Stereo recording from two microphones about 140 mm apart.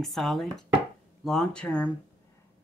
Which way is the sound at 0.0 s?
Centre (ahead or behind).